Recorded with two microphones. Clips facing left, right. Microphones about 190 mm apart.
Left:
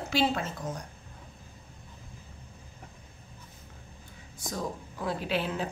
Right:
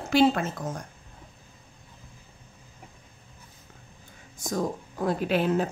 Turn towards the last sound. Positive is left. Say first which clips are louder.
# right 7 dB
turn(degrees=-45)  # may be behind; listen again after turning